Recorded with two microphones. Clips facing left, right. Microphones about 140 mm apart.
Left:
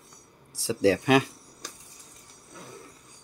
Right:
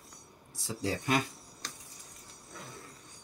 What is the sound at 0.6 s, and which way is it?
Speech, 90° left.